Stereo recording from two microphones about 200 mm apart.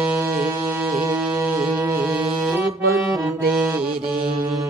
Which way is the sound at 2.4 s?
10° right (ahead or behind).